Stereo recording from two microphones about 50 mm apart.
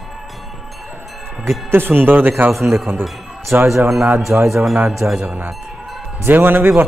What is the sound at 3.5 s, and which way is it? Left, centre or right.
Speech, right.